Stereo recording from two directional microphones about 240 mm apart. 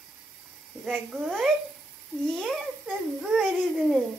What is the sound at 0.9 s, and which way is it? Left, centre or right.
A child's voice, centre.